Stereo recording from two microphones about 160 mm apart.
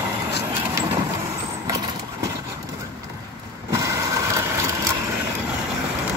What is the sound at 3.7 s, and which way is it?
Vehicle, 20° right (ahead or behind).